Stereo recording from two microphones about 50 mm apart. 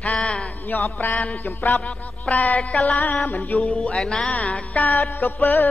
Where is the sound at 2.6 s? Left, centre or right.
Left.